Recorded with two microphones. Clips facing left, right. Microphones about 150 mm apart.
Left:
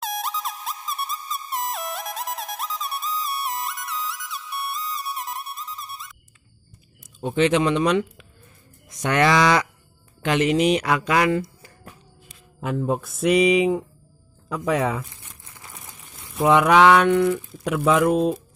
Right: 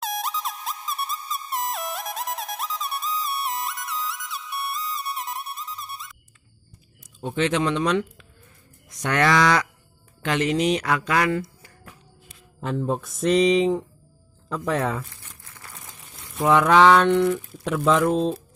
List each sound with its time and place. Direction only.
0.0 s music: centre (ahead or behind)
7.2 s speech: 15° left (ahead or behind)
12.5 s speech: 5° left (ahead or behind)
14.5 s crumpling: 10° left (ahead or behind)
16.2 s a sound: centre (ahead or behind)
16.4 s speech: 15° left (ahead or behind)